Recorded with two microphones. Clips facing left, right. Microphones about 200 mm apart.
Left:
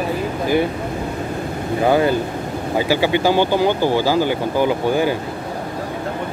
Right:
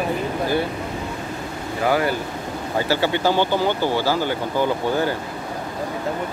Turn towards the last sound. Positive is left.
turn(degrees=15)  # may be behind; listen again after turning